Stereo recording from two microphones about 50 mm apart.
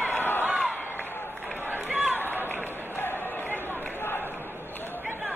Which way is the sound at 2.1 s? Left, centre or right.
Left.